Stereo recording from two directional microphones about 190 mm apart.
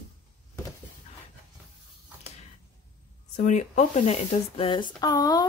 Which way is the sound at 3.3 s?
40° left (ahead or behind).